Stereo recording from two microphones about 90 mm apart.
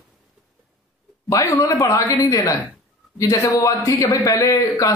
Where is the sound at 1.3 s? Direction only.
35° left (ahead or behind).